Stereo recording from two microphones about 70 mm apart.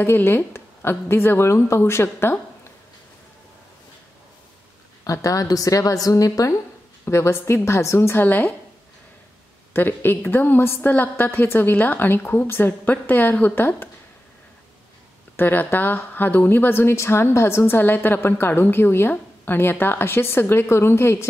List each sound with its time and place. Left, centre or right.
0.0 s speech: left
5.0 s a woman's voice: left
7.1 s speech: left
8.2 s a woman's voice: left
9.8 s a woman's voice: left
15.3 s speech: left